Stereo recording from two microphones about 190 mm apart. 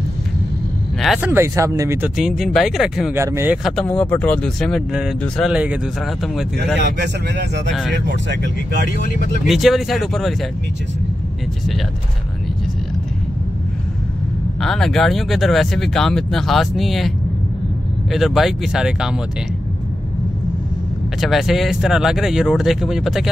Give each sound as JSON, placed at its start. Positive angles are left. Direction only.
{"t": 1.0, "sound": "speech", "side_deg": 0}
{"t": 1.3, "sound": "speech", "side_deg": -15}
{"t": 2.1, "sound": "speech", "side_deg": 0}
{"t": 3.2, "sound": "speech", "side_deg": -15}
{"t": 3.6, "sound": "speech", "side_deg": 5}
{"t": 7.0, "sound": "speech", "side_deg": -60}
{"t": 9.5, "sound": "speech", "side_deg": 0}
{"t": 14.6, "sound": "speech", "side_deg": 0}
{"t": 18.1, "sound": "speech", "side_deg": 0}
{"t": 21.2, "sound": "speech", "side_deg": 0}